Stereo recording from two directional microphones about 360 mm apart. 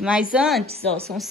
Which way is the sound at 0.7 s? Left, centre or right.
Centre.